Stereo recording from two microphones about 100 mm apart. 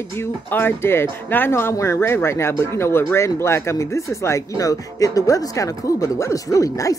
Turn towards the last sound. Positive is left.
turn(degrees=35)  # may be behind; listen again after turning